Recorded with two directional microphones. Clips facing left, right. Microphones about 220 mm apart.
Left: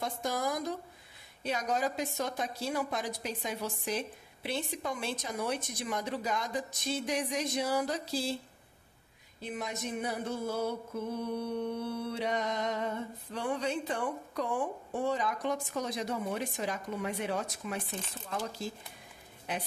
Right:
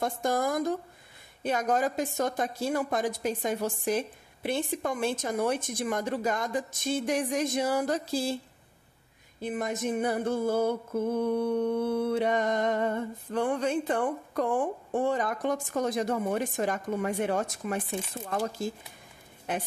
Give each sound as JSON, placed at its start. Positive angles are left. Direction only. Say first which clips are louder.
{"t": 0.0, "sound": "music", "louder": "right 6 dB", "side_deg": -50}
{"t": 9.4, "sound": "music", "louder": "right 7 dB", "side_deg": -50}